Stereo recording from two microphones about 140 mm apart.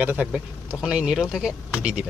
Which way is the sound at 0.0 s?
10° right (ahead or behind).